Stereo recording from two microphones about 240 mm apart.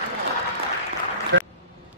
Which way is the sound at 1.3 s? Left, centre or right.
Right.